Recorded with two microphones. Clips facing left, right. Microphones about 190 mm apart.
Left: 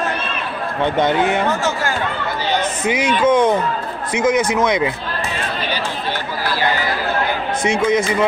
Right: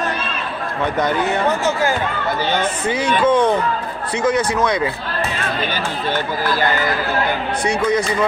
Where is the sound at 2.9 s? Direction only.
20° left (ahead or behind).